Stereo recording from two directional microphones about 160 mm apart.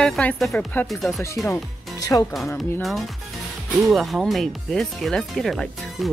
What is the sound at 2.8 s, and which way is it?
Speech, centre (ahead or behind).